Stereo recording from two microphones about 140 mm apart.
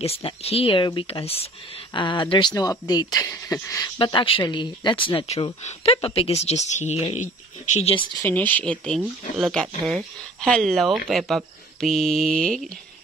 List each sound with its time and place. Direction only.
0.0 s speech: 45° left (ahead or behind); by 3.9 s 20° left (ahead or behind)
4.0 s speech: 35° left (ahead or behind)
5.6 s speech: 55° left (ahead or behind)
5.9 s speech: 45° left (ahead or behind)
8.2 s speech: 10° left (ahead or behind)